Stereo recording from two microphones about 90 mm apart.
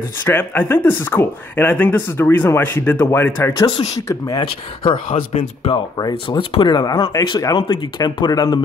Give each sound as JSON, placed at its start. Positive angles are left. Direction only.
{"t": 0.2, "sound": "speech", "side_deg": 25}
{"t": 3.5, "sound": "speech", "side_deg": 55}
{"t": 4.4, "sound": "speech", "side_deg": 70}
{"t": 6.2, "sound": "speech", "side_deg": 70}
{"t": 7.6, "sound": "speech", "side_deg": 60}
{"t": 8.3, "sound": "speech", "side_deg": 45}